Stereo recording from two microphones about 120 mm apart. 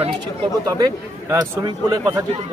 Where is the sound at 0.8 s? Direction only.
30° right (ahead or behind).